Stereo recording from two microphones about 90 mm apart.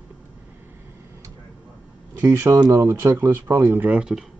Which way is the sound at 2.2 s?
35° right (ahead or behind).